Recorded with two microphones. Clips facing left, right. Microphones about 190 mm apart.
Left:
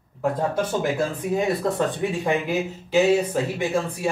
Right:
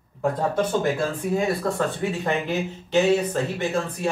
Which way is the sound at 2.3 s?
10° left (ahead or behind).